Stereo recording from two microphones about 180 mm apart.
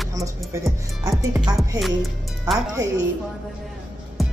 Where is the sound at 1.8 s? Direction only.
Centre (ahead or behind).